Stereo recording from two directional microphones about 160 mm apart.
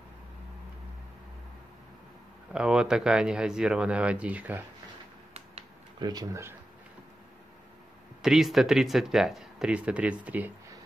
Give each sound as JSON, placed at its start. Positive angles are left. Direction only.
{"t": 2.5, "sound": "speech", "side_deg": -5}
{"t": 5.3, "sound": "finger snapping", "side_deg": -40}
{"t": 5.9, "sound": "speech", "side_deg": -25}
{"t": 8.2, "sound": "speech", "side_deg": 0}